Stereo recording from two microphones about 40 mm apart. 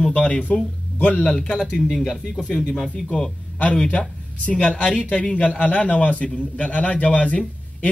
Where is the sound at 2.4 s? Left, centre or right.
Centre.